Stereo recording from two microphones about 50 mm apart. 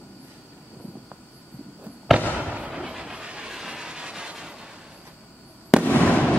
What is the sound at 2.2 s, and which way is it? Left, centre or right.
Fireworks, left.